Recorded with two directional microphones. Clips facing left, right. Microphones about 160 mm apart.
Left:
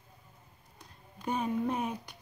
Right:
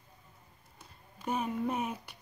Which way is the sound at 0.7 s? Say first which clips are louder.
Left 2 dB; 5° right (ahead or behind).